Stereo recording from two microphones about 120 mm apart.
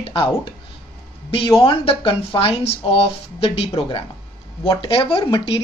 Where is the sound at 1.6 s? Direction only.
50° left (ahead or behind).